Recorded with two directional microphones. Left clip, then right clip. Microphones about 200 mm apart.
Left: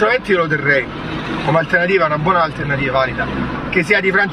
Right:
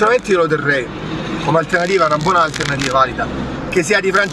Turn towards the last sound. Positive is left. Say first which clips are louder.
# even
turn(degrees=-25)  # may be behind; listen again after turning